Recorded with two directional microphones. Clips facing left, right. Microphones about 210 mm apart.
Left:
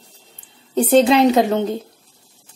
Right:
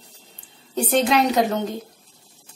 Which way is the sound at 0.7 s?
25° left (ahead or behind).